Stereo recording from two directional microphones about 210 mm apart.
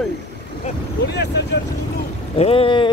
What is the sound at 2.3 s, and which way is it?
Speech, 25° left (ahead or behind).